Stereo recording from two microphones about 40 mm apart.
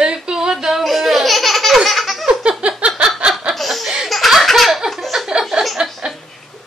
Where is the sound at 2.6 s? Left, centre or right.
Right.